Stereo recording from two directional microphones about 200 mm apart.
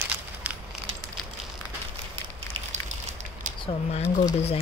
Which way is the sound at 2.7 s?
35° right (ahead or behind).